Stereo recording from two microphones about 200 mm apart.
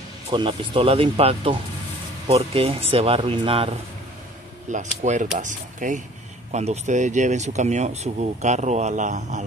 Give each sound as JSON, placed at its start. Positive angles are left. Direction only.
{"t": 0.3, "sound": "speech", "side_deg": -25}
{"t": 4.6, "sound": "speech", "side_deg": -40}